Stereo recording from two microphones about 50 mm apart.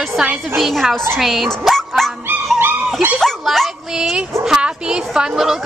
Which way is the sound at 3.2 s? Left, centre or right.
Centre.